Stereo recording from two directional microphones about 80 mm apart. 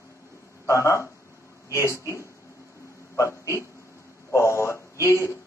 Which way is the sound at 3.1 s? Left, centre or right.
Left.